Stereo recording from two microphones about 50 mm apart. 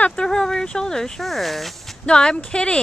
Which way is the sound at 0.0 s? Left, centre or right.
Centre.